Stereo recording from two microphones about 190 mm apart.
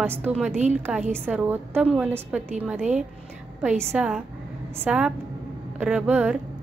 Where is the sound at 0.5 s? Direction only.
35° right (ahead or behind).